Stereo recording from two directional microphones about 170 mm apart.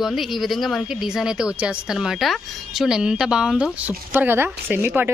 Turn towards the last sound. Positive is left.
turn(degrees=-10)  # may be behind; listen again after turning